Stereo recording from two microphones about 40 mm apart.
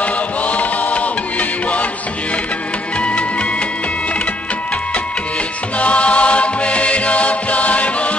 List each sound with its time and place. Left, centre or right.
0.0 s music: left
3.0 s music: left
5.8 s music: left